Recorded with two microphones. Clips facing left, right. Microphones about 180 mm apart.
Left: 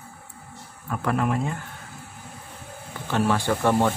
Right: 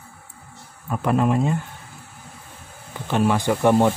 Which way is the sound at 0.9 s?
20° right (ahead or behind).